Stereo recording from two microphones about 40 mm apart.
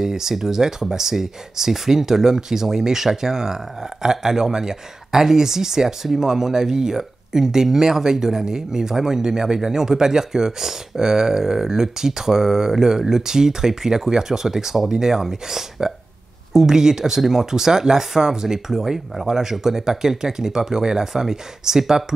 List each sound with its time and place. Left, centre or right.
0.0 s speech: centre